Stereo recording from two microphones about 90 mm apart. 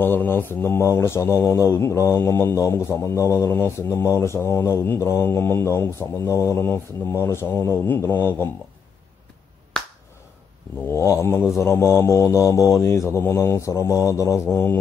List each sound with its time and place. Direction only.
0.0 s speech: 20° left (ahead or behind)
10.9 s mantra: 35° left (ahead or behind)